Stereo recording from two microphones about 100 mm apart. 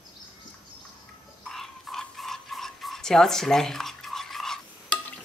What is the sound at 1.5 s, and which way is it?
Toothbrush, 5° left (ahead or behind).